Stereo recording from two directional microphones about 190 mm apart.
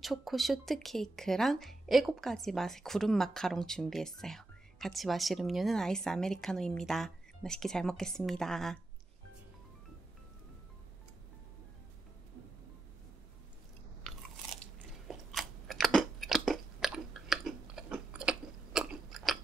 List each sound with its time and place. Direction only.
0.0 s speech: centre (ahead or behind)
15.0 s chewing: centre (ahead or behind)